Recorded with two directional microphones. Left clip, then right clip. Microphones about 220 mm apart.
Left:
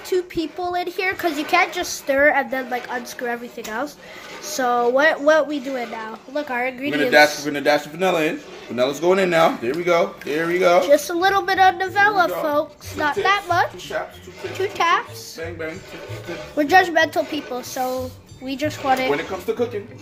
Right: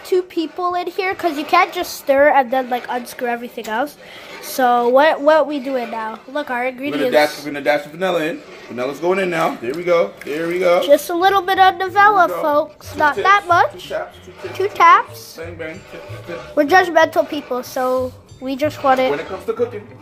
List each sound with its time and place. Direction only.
0.1 s a woman's voice: 10° right (ahead or behind)
7.5 s speech: 20° left (ahead or behind)
8.7 s speech: 25° left (ahead or behind)
10.8 s a woman's voice: 10° right (ahead or behind)
16.5 s a woman's voice: 15° right (ahead or behind)